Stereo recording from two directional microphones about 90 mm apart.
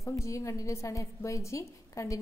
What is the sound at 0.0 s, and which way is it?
A woman's voice, 35° left (ahead or behind).